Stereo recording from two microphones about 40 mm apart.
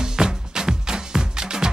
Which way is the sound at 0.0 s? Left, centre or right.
Centre.